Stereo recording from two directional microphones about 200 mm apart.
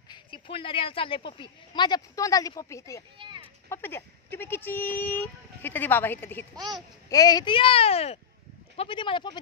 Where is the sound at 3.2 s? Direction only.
25° right (ahead or behind).